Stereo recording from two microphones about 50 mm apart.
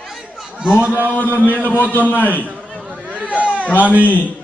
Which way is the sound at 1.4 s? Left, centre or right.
Left.